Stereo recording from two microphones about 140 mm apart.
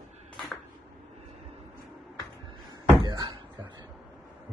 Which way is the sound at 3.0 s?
35° right (ahead or behind).